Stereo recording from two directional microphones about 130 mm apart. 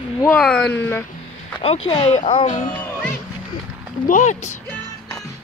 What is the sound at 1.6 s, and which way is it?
Speech, 50° left (ahead or behind).